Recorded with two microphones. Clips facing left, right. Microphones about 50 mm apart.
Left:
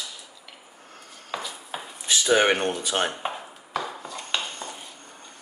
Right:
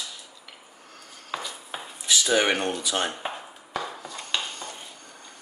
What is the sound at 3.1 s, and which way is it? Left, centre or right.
Dishes, centre.